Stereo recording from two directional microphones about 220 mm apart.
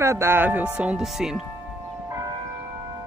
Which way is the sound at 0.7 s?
5° right (ahead or behind).